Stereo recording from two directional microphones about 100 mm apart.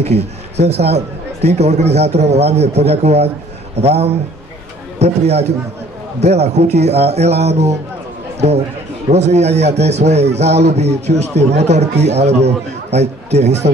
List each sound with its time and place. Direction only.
0.0 s a man's voice: 90° right
9.1 s a man's voice: 90° right